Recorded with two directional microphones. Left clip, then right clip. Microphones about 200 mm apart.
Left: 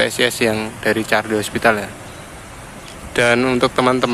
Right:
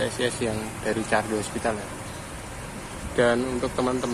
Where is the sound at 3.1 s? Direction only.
25° left (ahead or behind).